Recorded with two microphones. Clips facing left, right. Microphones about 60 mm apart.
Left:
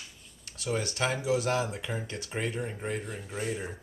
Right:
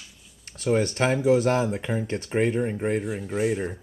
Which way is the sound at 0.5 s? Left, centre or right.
Right.